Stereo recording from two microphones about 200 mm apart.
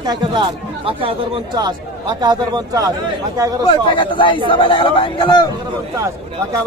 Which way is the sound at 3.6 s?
25° left (ahead or behind).